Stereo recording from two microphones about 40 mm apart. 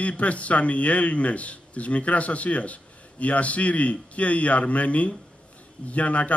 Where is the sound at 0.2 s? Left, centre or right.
Left.